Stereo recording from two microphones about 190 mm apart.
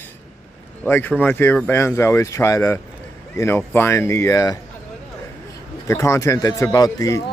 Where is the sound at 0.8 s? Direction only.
10° left (ahead or behind).